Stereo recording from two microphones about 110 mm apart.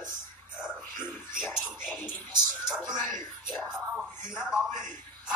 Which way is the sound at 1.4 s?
5° right (ahead or behind).